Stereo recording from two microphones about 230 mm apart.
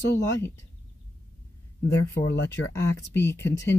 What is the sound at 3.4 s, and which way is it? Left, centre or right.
Speech, centre.